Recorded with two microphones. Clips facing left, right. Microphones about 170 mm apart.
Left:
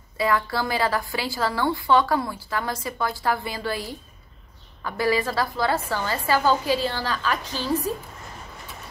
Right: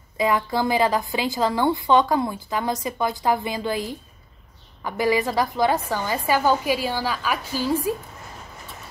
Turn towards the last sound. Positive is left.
turn(degrees=-10)  # may be behind; listen again after turning